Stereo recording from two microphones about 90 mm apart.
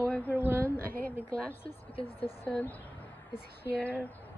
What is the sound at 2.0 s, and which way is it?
Speech, 90° left.